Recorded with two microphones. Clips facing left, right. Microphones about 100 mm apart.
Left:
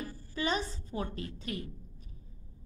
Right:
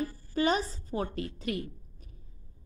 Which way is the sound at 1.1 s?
30° left (ahead or behind).